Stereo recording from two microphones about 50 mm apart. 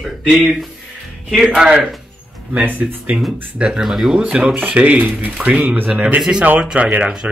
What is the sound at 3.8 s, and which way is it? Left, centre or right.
Speech, centre.